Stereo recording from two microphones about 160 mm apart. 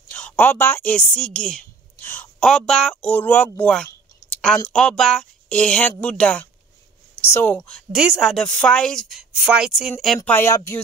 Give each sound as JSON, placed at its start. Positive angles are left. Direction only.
{"t": 0.1, "sound": "a woman's voice", "side_deg": 10}
{"t": 7.9, "sound": "a woman's voice", "side_deg": -5}
{"t": 10.3, "sound": "speech", "side_deg": 20}